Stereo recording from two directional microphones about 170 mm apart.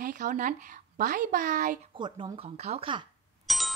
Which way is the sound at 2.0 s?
30° right (ahead or behind).